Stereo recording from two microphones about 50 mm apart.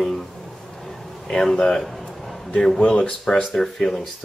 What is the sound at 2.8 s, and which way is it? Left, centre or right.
Speech, left.